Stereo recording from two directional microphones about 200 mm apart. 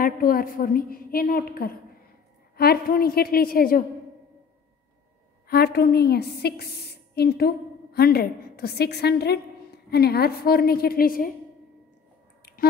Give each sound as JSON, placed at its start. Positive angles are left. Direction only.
{"t": 0.0, "sound": "a woman's voice", "side_deg": 45}
{"t": 5.5, "sound": "a woman's voice", "side_deg": 55}